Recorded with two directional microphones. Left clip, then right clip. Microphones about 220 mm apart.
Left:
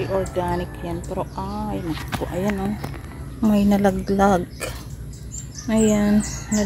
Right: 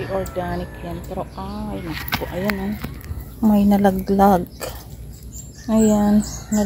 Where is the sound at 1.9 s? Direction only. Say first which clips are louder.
Right 4 dB; 15° right (ahead or behind).